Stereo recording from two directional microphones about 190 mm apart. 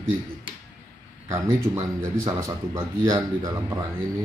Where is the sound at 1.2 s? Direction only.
15° right (ahead or behind).